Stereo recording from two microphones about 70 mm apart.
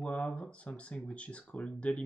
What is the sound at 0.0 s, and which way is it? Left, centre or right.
Speech, centre.